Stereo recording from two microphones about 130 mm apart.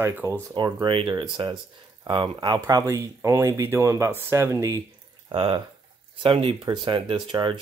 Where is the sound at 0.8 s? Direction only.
40° right (ahead or behind); by 4.8 s 25° right (ahead or behind).